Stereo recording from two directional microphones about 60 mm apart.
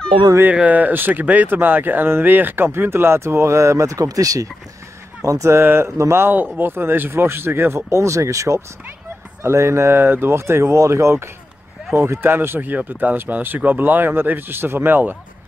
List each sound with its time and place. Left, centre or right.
0.5 s speech: right
5.2 s speech: right
5.6 s speech: right
5.9 s speech: right
6.2 s speech: right
7.9 s speech: right
11.9 s speech: right